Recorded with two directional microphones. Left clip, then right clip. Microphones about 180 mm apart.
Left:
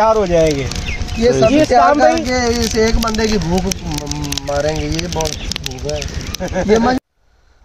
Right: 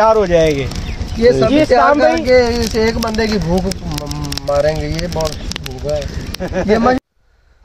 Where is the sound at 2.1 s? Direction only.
30° right (ahead or behind).